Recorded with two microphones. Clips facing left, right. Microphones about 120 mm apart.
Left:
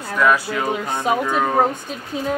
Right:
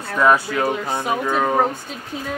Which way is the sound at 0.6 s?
20° left (ahead or behind).